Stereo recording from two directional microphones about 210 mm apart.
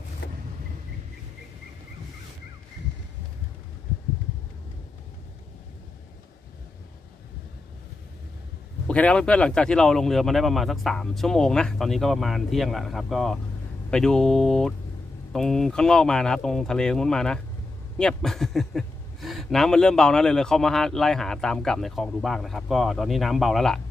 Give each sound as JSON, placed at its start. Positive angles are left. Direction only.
{"t": 0.2, "sound": "vehicle", "side_deg": 50}
{"t": 8.8, "sound": "speech", "side_deg": 5}